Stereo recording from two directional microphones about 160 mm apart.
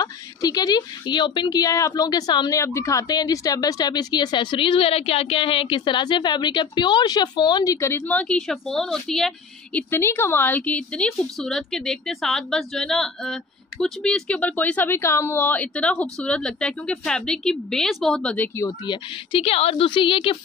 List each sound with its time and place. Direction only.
0.0 s a woman's voice: 25° left (ahead or behind)
8.0 s a woman's voice: 10° left (ahead or behind)
9.8 s a woman's voice: 15° left (ahead or behind)
18.9 s a woman's voice: 35° left (ahead or behind)